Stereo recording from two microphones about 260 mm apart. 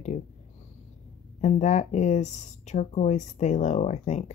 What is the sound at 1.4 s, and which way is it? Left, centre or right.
A woman's voice, left.